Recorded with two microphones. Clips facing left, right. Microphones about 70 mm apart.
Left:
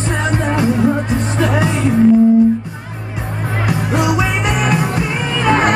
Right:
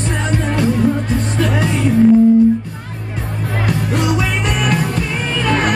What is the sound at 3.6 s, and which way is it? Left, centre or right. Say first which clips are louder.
Music: left 2 dB; centre.